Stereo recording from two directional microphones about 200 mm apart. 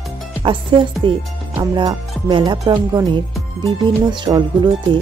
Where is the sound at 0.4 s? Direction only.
25° right (ahead or behind).